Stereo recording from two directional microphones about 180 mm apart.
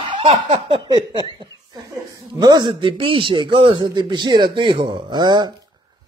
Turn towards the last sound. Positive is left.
turn(degrees=-25)  # may be behind; listen again after turning